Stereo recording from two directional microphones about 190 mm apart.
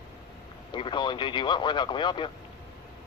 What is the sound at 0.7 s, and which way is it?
Radio, 25° left (ahead or behind).